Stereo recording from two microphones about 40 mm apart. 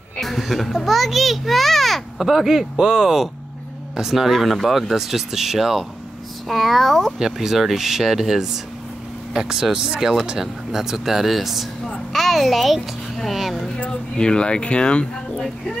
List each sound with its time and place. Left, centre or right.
0.4 s a child's voice: centre
2.2 s speech: centre
6.4 s speech: centre
7.2 s a child's voice: centre
13.7 s speech: left